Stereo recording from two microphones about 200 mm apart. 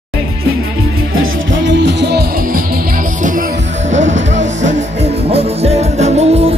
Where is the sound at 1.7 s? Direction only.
60° right (ahead or behind).